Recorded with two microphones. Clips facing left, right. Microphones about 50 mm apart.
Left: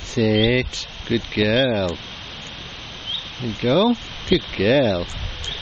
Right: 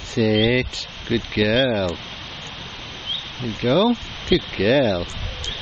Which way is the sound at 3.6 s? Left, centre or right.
Centre.